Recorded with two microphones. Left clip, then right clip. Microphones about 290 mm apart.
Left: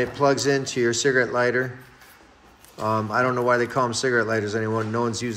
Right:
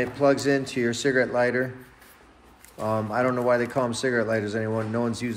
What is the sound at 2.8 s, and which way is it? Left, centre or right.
A man's voice, centre.